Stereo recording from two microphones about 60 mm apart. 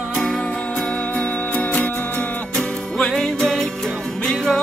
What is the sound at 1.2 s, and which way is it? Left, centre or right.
Music, left.